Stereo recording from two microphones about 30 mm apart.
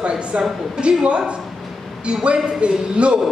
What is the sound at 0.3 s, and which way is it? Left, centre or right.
Speech, right.